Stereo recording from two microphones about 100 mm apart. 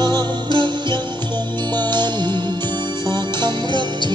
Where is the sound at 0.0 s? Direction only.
50° right (ahead or behind).